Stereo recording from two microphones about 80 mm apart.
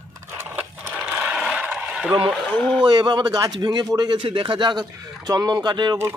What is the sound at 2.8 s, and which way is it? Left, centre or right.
Speech, right.